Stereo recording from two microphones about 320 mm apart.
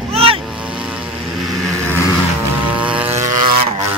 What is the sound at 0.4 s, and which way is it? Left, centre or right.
Vehicle, centre.